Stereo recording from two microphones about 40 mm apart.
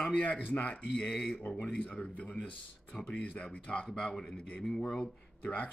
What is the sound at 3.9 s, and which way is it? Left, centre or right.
Speech, centre.